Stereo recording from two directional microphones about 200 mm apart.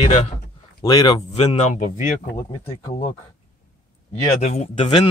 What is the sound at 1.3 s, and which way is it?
Speech, 35° left (ahead or behind).